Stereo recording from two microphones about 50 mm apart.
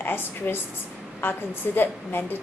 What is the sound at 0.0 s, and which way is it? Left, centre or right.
A woman's voice, left.